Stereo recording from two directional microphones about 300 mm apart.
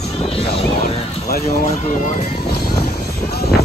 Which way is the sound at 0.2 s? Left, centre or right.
Centre.